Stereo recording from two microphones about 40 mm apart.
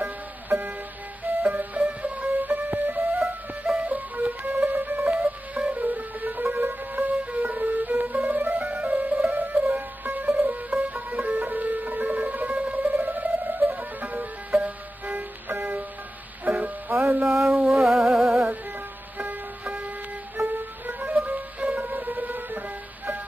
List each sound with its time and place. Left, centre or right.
1.5 s music: right
5.1 s music: right
5.8 s music: right
16.4 s music: right
17.3 s music: centre
19.6 s a sound: right
20.4 s music: right
21.0 s music: right